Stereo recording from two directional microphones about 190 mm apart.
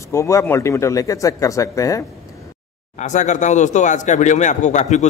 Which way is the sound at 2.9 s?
40° left (ahead or behind).